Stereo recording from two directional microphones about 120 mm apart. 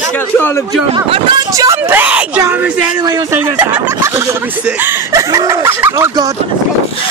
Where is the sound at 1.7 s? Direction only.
15° right (ahead or behind).